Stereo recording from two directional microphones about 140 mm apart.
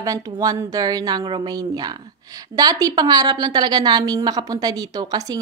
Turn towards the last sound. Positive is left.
turn(degrees=-25)  # may be behind; listen again after turning